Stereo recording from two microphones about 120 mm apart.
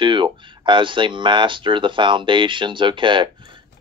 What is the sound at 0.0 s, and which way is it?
Speech, 40° right (ahead or behind).